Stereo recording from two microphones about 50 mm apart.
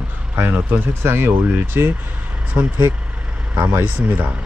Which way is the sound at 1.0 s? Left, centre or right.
Right.